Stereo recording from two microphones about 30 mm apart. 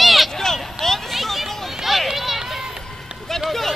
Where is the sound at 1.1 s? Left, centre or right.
Centre.